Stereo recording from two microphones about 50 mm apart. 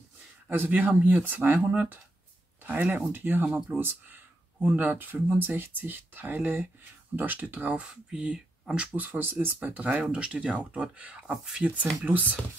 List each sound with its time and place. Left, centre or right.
0.5 s speech: right
2.6 s speech: right
7.8 s speech: centre
8.9 s speech: right
9.2 s speech: right
9.6 s speech: right
10.0 s speech: right